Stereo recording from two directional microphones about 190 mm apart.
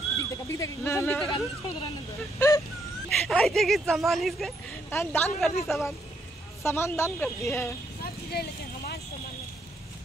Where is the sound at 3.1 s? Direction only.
Centre (ahead or behind).